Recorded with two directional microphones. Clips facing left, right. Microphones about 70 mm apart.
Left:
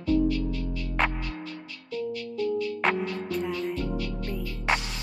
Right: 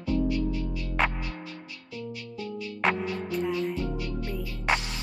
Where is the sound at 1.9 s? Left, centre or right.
Centre.